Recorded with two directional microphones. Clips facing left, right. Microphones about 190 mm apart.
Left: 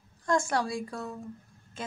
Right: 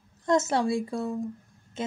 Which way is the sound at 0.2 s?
20° right (ahead or behind).